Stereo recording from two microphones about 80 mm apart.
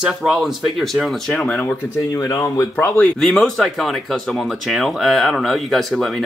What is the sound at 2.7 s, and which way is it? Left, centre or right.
Speech, left.